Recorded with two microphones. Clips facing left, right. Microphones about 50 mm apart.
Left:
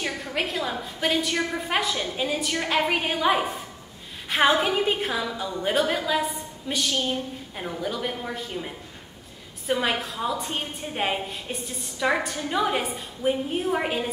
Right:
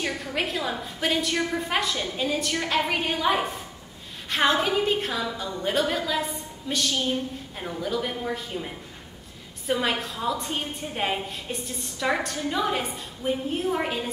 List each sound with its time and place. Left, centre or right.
0.0 s a woman's voice: centre